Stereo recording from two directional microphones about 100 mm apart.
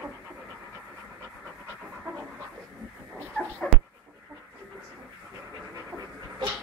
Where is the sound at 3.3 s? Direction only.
10° left (ahead or behind).